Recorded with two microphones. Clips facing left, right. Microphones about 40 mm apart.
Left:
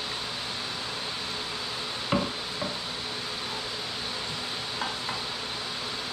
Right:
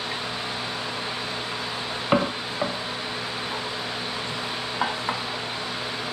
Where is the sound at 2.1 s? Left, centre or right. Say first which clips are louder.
Right 6 dB; right.